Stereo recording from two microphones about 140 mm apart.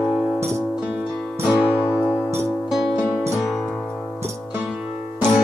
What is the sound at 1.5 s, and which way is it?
Music, 15° left (ahead or behind).